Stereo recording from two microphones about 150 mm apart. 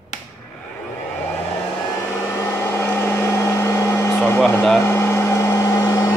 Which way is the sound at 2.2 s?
15° left (ahead or behind).